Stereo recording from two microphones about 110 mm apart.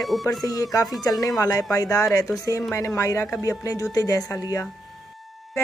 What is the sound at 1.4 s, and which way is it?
Speech, 30° left (ahead or behind).